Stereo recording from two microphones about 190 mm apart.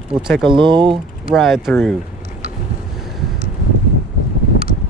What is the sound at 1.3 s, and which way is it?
Speech, centre (ahead or behind).